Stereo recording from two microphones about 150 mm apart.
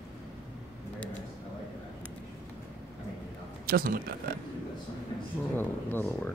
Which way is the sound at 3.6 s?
70° right (ahead or behind).